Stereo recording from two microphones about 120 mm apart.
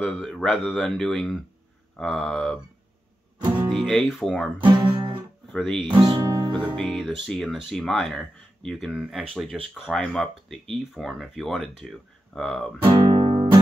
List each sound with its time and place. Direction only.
0.0 s speech: centre (ahead or behind)
3.7 s speech: centre (ahead or behind)
4.6 s speech: 40° right (ahead or behind)
4.9 s guitar: 45° right (ahead or behind)
5.5 s speech: centre (ahead or behind)
5.9 s speech: 40° right (ahead or behind)
6.2 s music: 25° right (ahead or behind)
6.7 s speech: 5° left (ahead or behind)
13.1 s guitar: 40° right (ahead or behind)